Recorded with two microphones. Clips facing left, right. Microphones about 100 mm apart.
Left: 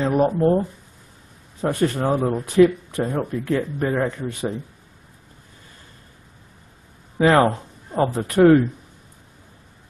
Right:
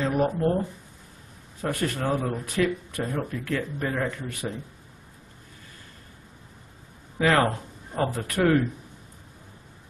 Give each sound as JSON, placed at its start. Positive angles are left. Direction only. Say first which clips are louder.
{"t": 0.0, "sound": "speech", "louder": "left 6 dB", "side_deg": 25}
{"t": 1.6, "sound": "speech", "louder": "left 7 dB", "side_deg": 25}
{"t": 7.2, "sound": "speech", "louder": "left 6 dB", "side_deg": 25}